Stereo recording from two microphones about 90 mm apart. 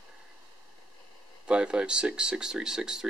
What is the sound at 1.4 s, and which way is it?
Speech, 10° right (ahead or behind).